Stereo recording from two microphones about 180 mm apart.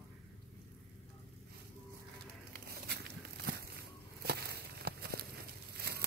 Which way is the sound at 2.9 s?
65° right (ahead or behind).